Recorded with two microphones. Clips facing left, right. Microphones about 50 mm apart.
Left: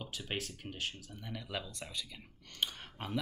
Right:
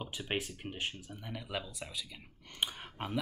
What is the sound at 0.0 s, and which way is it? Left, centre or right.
Speech, right.